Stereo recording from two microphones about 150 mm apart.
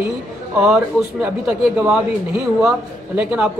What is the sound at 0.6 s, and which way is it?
A man's voice, 5° right (ahead or behind).